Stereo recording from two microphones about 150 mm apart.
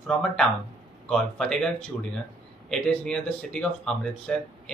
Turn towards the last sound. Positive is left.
turn(degrees=5)  # may be behind; listen again after turning